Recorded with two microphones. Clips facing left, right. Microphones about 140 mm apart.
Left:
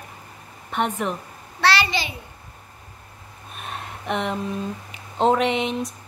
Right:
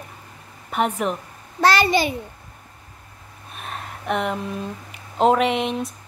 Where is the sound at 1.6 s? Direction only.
45° right (ahead or behind).